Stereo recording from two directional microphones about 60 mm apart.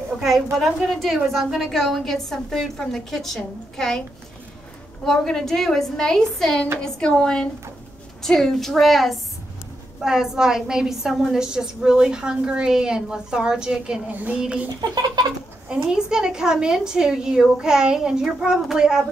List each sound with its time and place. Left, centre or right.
0.6 s a woman's voice: centre
0.8 s a woman's voice: centre
5.0 s a woman's voice: centre
10.0 s a woman's voice: centre
14.1 s child singing: right
15.7 s a woman's voice: centre